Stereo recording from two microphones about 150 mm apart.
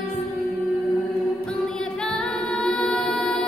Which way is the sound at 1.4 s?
5° left (ahead or behind).